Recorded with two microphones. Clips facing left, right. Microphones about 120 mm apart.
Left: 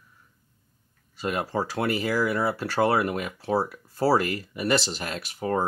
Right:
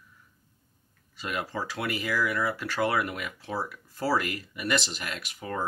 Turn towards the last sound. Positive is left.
turn(degrees=35)  # may be behind; listen again after turning